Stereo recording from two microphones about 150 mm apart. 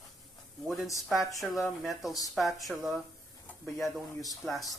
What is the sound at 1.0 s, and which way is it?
A woman's voice, centre (ahead or behind).